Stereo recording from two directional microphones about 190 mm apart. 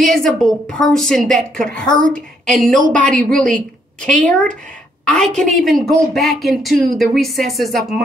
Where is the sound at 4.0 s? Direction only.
5° left (ahead or behind).